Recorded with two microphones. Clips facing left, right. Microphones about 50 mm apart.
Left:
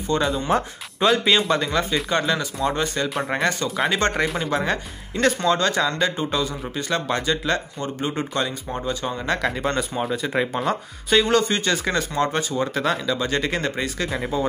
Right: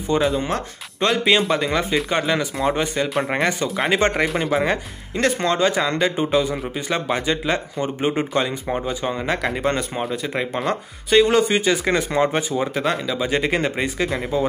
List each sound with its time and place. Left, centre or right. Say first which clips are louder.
0.1 s speech: right 1 dB; centre
14.0 s speech: right 2 dB; centre